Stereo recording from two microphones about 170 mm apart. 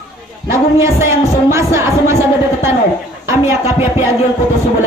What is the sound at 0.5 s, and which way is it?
A man's voice, 15° right (ahead or behind).